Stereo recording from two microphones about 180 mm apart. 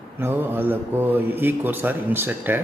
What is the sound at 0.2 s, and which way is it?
A man's voice, 10° right (ahead or behind).